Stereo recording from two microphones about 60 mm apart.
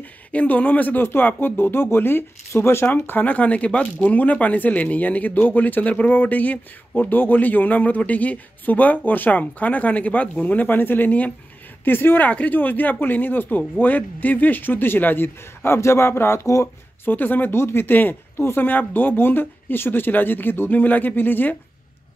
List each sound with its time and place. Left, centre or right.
0.3 s speech: left
17.0 s speech: left
17.6 s speech: left